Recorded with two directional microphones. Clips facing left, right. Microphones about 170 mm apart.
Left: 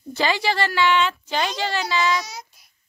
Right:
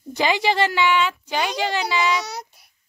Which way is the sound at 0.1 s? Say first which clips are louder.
Right 2 dB; 15° right (ahead or behind).